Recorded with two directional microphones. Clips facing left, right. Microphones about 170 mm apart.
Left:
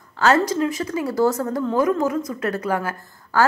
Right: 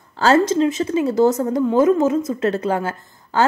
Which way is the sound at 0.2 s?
25° right (ahead or behind).